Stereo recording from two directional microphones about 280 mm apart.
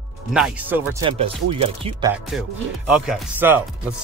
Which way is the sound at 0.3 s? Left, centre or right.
Centre.